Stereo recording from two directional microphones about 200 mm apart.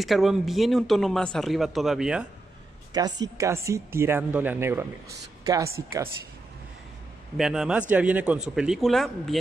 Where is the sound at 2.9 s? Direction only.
20° right (ahead or behind).